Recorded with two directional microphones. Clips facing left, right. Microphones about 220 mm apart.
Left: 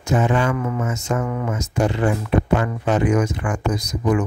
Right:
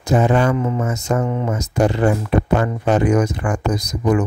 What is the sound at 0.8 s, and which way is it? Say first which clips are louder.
Speech: right 3 dB; 35° right (ahead or behind).